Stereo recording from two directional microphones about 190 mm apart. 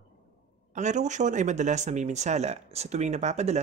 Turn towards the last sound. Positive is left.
turn(degrees=-35)  # may be behind; listen again after turning